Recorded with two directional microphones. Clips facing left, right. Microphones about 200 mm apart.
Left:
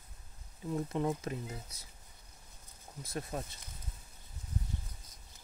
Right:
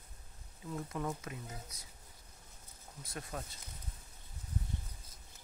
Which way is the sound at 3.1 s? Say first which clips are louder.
Left 5 dB; 25° left (ahead or behind).